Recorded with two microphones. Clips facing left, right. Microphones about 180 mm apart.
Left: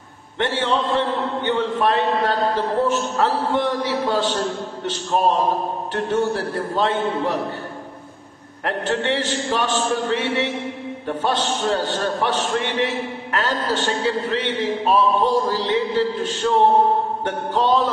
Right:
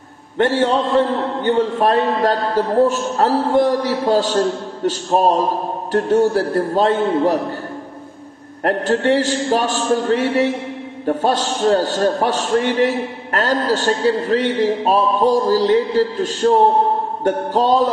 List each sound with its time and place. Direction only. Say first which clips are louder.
0.4 s a man's voice: right 6 dB; 40° right (ahead or behind)
8.6 s a man's voice: right 6 dB; 40° right (ahead or behind)